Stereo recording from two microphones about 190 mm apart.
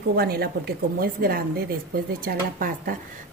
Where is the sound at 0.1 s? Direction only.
55° right (ahead or behind).